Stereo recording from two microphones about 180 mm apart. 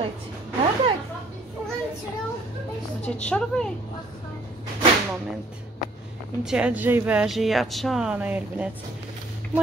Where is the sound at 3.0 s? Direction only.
5° left (ahead or behind).